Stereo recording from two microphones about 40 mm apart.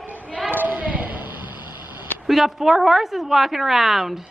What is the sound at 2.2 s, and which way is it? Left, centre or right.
A woman's voice, centre.